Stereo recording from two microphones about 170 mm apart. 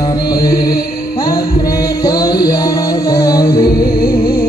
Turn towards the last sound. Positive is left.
turn(degrees=20)  # may be behind; listen again after turning